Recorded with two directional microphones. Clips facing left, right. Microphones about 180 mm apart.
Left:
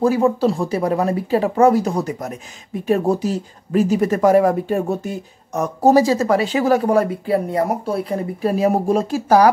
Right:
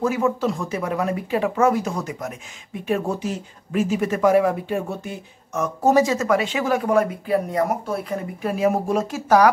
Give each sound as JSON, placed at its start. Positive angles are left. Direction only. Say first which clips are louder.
{"t": 0.0, "sound": "speech", "louder": "left 5 dB", "side_deg": 35}